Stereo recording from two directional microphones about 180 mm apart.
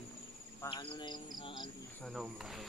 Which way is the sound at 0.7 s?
25° left (ahead or behind).